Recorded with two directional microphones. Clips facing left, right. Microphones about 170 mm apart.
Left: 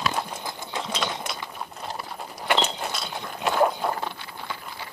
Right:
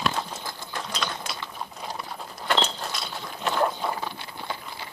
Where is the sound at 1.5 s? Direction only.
5° left (ahead or behind).